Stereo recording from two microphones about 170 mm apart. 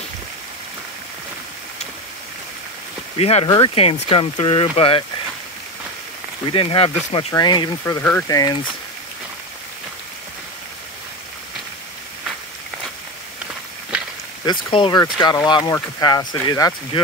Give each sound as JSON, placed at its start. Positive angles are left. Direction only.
{"t": 3.2, "sound": "speech", "side_deg": 35}
{"t": 3.4, "sound": "speech", "side_deg": 25}
{"t": 6.5, "sound": "speech", "side_deg": 30}
{"t": 7.3, "sound": "speech", "side_deg": 25}
{"t": 7.8, "sound": "speech", "side_deg": 15}
{"t": 14.4, "sound": "speech", "side_deg": 25}